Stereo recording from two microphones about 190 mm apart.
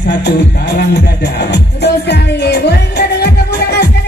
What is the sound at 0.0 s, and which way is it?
Music, 65° left (ahead or behind).